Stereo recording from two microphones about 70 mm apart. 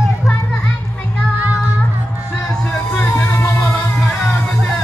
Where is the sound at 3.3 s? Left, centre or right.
Left.